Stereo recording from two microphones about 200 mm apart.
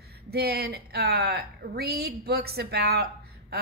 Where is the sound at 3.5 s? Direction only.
50° right (ahead or behind).